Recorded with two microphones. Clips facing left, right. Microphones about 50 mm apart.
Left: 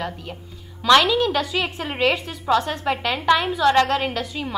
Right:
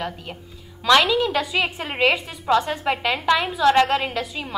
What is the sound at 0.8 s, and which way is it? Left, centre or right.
A woman's voice, centre.